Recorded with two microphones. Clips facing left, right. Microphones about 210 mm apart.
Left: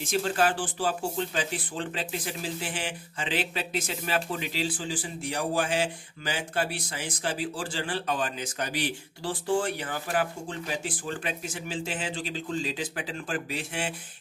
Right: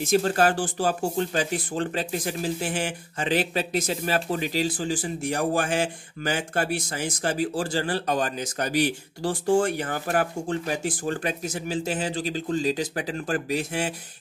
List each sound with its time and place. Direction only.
0.0 s speech: 45° right (ahead or behind)